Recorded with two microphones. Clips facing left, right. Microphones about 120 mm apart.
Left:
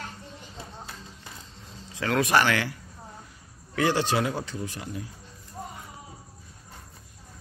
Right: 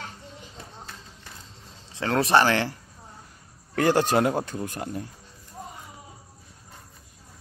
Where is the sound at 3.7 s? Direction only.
50° right (ahead or behind).